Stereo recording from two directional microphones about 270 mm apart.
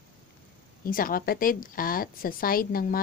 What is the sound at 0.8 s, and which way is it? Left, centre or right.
A woman's voice, left.